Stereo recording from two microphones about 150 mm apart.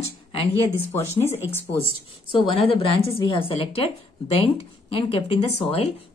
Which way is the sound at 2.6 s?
40° left (ahead or behind).